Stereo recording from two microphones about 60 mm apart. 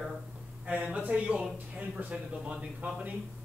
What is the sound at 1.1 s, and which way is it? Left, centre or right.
Speech, right.